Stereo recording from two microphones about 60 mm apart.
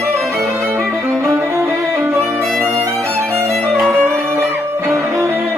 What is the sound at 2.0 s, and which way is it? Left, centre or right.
Violin, right.